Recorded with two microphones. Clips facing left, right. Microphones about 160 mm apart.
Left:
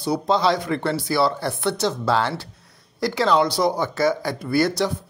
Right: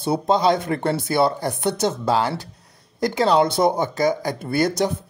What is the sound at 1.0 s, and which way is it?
Speech, 20° right (ahead or behind).